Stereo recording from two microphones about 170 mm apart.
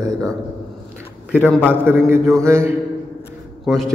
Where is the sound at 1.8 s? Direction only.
15° right (ahead or behind).